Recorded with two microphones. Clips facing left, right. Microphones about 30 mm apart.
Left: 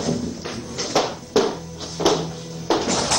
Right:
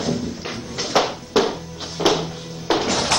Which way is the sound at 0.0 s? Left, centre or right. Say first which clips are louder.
Right 1 dB; centre.